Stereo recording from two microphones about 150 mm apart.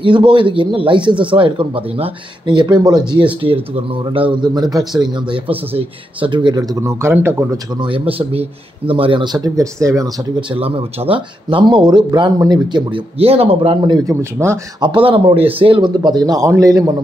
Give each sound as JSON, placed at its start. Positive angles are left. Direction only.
{"t": 0.0, "sound": "speech", "side_deg": -35}
{"t": 7.5, "sound": "speech", "side_deg": -30}
{"t": 10.5, "sound": "speech", "side_deg": -40}
{"t": 14.8, "sound": "speech", "side_deg": -35}